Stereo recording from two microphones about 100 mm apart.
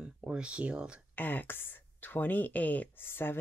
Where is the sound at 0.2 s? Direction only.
10° right (ahead or behind).